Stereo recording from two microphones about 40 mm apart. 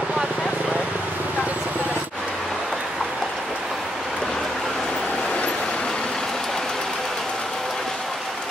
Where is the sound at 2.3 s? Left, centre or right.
Centre.